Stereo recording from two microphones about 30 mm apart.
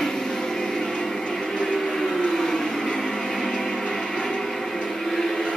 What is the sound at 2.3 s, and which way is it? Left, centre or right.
Vehicle, centre.